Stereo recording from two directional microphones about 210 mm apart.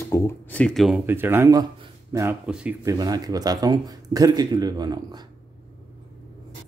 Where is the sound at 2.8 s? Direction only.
15° right (ahead or behind).